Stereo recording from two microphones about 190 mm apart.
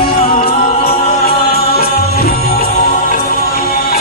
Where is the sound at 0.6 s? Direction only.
50° left (ahead or behind).